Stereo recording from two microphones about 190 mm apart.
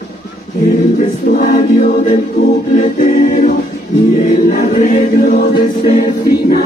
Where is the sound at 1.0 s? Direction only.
40° left (ahead or behind).